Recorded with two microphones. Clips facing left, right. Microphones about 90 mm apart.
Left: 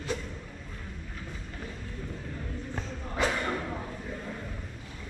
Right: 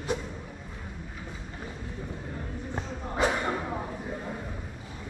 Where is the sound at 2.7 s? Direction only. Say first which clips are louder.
Right 4 dB; 20° right (ahead or behind).